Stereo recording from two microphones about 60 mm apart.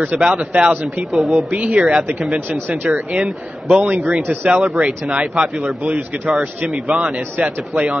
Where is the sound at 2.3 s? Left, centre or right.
Right.